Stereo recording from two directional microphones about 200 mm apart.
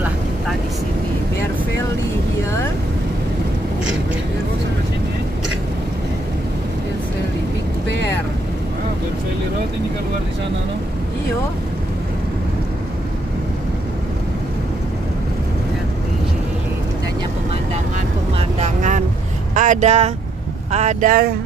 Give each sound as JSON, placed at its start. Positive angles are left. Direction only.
{"t": 18.6, "sound": "vehicle", "side_deg": -35}
{"t": 19.5, "sound": "speech", "side_deg": -40}